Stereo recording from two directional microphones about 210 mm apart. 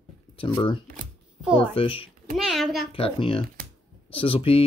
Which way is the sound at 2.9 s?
25° left (ahead or behind).